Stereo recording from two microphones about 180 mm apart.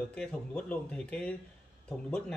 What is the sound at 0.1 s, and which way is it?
Speech, 5° left (ahead or behind).